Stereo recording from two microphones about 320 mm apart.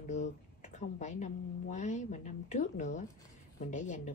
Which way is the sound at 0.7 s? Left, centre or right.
Left.